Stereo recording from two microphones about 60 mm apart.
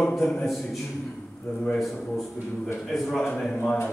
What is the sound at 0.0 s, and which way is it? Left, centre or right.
Speech, centre.